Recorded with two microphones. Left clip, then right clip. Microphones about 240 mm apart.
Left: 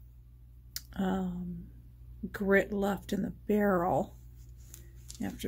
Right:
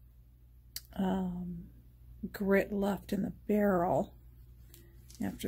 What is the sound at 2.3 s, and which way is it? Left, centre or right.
Speech, centre.